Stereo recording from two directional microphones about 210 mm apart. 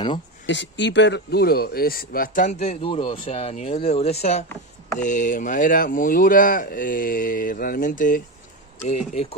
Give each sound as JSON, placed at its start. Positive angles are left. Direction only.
{"t": 0.5, "sound": "speech", "side_deg": 60}